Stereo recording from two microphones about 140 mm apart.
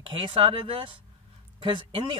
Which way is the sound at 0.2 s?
35° right (ahead or behind).